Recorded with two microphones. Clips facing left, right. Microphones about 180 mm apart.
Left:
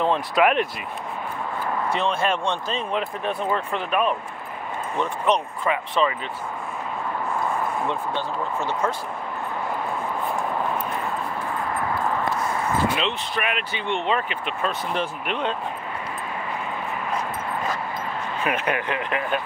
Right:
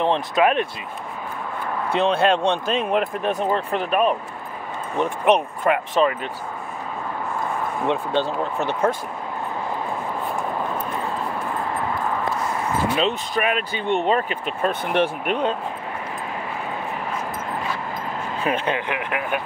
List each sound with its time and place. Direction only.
0.0 s speech: 25° right (ahead or behind)
1.9 s speech: 60° right (ahead or behind)
2.9 s speech: 45° right (ahead or behind)
5.3 s speech: 50° right (ahead or behind)
7.9 s speech: 75° right (ahead or behind)
12.9 s speech: 40° right (ahead or behind); by 15.0 s 60° right (ahead or behind)
15.2 s speech: 45° right (ahead or behind)
18.4 s speech: 30° right (ahead or behind)
18.9 s speech: 10° right (ahead or behind)